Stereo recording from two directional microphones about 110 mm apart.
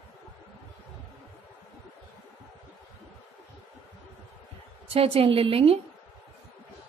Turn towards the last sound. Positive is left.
turn(degrees=-60)  # may be behind; listen again after turning